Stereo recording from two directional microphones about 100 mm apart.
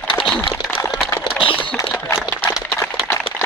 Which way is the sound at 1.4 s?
60° left (ahead or behind).